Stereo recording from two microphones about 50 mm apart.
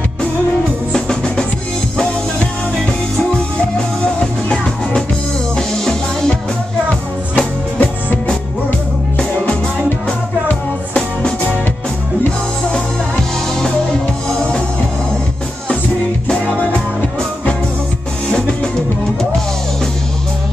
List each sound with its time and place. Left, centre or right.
0.9 s music: centre
4.0 s music: centre
7.3 s music: left
12.6 s music: centre
16.3 s music: centre